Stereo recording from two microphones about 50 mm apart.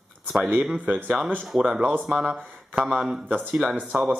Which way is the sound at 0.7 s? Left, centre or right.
Right.